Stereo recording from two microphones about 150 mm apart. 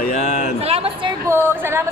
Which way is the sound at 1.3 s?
15° right (ahead or behind).